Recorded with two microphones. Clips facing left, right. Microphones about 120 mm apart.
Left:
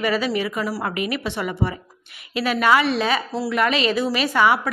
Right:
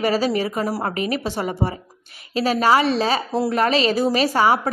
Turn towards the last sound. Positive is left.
turn(degrees=-35)  # may be behind; listen again after turning